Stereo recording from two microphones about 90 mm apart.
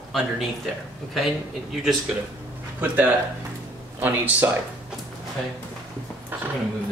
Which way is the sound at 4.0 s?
20° right (ahead or behind).